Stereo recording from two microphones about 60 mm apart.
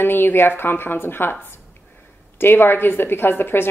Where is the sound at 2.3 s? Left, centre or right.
Left.